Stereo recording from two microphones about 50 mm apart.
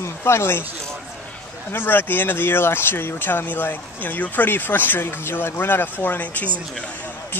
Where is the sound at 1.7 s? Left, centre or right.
Left.